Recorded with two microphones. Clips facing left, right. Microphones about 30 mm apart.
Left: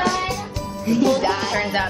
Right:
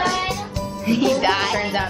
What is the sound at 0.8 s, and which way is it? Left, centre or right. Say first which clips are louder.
Music: even; right.